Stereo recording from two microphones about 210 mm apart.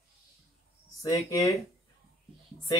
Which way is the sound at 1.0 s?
15° left (ahead or behind).